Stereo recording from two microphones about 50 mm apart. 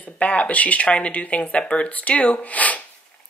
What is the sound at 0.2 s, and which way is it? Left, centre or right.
Speech, left.